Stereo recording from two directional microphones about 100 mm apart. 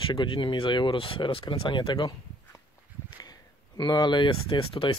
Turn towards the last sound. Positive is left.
turn(degrees=60)  # may be behind; listen again after turning